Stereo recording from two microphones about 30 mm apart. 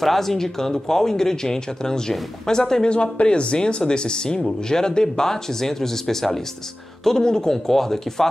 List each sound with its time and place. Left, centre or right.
0.0 s speech: centre; by 2.9 s left
2.9 s speech: left; by 8.3 s centre